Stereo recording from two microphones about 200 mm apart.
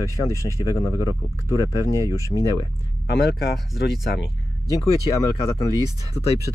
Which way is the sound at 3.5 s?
Centre (ahead or behind).